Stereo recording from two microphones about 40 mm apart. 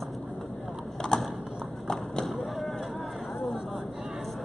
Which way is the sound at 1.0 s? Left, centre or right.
Centre.